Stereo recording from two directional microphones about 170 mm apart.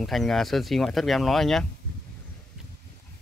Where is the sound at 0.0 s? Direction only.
Centre (ahead or behind).